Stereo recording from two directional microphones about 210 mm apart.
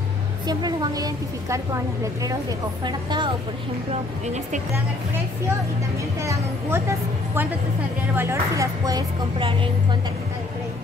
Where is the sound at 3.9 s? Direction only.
30° right (ahead or behind).